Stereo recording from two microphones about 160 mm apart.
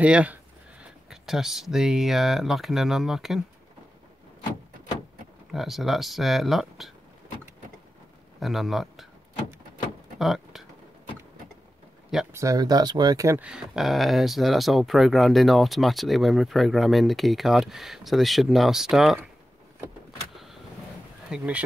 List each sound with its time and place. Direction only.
0.0 s speech: 10° right (ahead or behind)
5.5 s speech: centre (ahead or behind)
8.4 s speech: centre (ahead or behind)
10.1 s door: centre (ahead or behind)
12.3 s speech: 20° right (ahead or behind)
13.4 s speech: 5° right (ahead or behind)
21.3 s speech: 10° right (ahead or behind)